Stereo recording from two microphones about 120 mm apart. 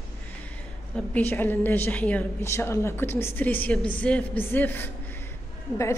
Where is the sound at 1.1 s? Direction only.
15° left (ahead or behind).